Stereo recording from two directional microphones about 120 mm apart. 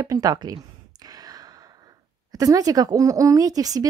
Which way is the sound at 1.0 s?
30° right (ahead or behind).